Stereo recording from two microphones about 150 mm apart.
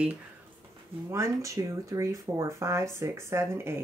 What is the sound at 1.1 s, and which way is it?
Speech, 20° right (ahead or behind).